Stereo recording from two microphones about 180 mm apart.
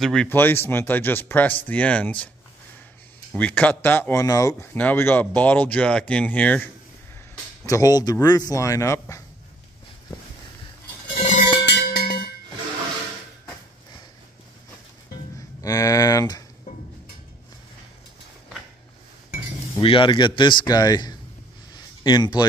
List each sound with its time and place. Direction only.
0.0 s speech: 5° left (ahead or behind)
3.3 s speech: 10° left (ahead or behind)
7.6 s speech: 20° left (ahead or behind)
11.1 s cowbell: 45° left (ahead or behind)
11.6 s a sound: 65° left (ahead or behind)
15.3 s a sound: 20° left (ahead or behind)
19.8 s speech: 30° left (ahead or behind)